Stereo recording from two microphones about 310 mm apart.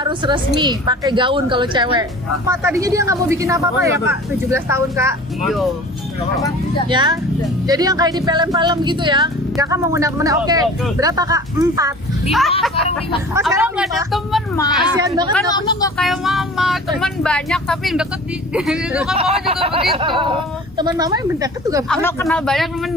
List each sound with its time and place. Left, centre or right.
0.0 s a woman's voice: centre
6.4 s speech: centre
6.9 s a woman's voice: centre
12.3 s speech: centre
15.0 s a woman's voice: centre
15.3 s speech: centre
16.0 s speech: centre
19.1 s a woman's voice: centre
21.8 s speech: centre